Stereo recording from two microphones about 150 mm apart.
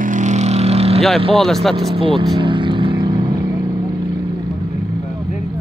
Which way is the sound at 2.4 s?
35° right (ahead or behind).